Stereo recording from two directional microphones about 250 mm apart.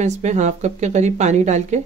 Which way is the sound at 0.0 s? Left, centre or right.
Right.